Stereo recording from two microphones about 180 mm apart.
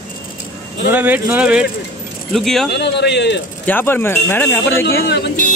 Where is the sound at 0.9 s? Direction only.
10° right (ahead or behind).